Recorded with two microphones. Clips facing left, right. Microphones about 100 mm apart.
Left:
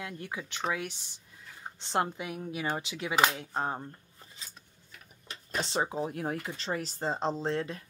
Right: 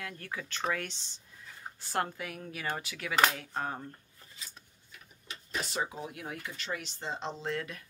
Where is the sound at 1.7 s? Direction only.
25° left (ahead or behind).